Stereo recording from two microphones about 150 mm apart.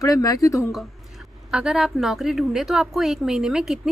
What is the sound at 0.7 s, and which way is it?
Speech, centre (ahead or behind).